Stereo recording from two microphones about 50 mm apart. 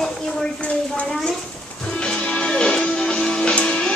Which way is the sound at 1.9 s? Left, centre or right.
Centre.